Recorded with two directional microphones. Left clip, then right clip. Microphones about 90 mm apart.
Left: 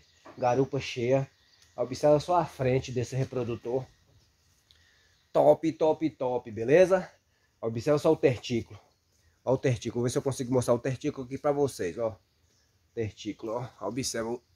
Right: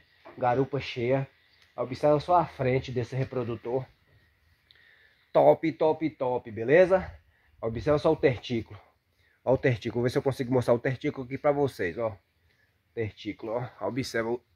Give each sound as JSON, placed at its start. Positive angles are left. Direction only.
{"t": 0.7, "sound": "speech", "side_deg": 0}
{"t": 5.3, "sound": "speech", "side_deg": -30}
{"t": 5.8, "sound": "speech", "side_deg": -5}
{"t": 9.4, "sound": "speech", "side_deg": -10}
{"t": 12.9, "sound": "speech", "side_deg": 10}
{"t": 13.6, "sound": "speech", "side_deg": -25}